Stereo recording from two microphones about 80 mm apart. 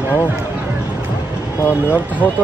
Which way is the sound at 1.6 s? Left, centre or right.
Left.